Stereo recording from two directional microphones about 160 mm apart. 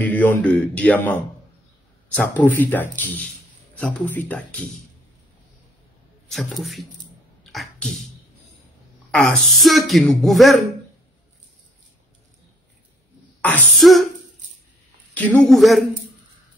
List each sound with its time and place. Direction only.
0.0 s a man's voice: 10° left (ahead or behind)
6.3 s a woman's voice: centre (ahead or behind)
9.1 s a woman's voice: centre (ahead or behind)
13.4 s a woman's voice: 5° left (ahead or behind)
15.1 s a woman's voice: 10° left (ahead or behind)